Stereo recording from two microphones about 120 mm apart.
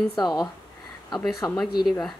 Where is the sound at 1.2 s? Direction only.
Centre (ahead or behind).